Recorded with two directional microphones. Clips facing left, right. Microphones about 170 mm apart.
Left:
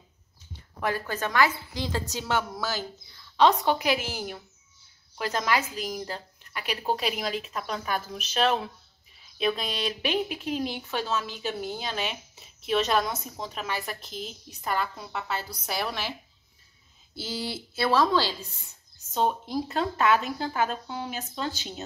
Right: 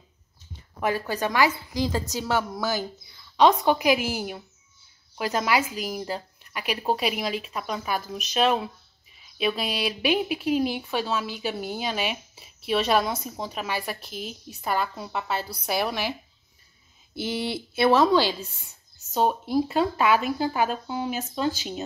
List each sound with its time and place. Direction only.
0.7 s speech: 15° right (ahead or behind)
19.1 s speech: 10° right (ahead or behind)